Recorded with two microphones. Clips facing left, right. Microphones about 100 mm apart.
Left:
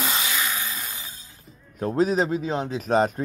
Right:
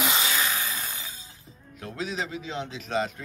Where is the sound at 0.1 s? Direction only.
15° right (ahead or behind).